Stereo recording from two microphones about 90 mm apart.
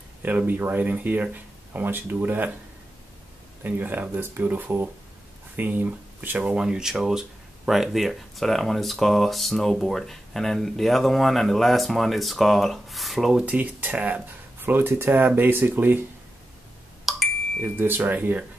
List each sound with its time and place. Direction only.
0.2 s speech: 20° right (ahead or behind)
3.6 s speech: 20° right (ahead or behind); by 13.4 s centre (ahead or behind)
13.4 s speech: 15° right (ahead or behind)
17.1 s a sound: centre (ahead or behind)
17.6 s speech: 20° right (ahead or behind)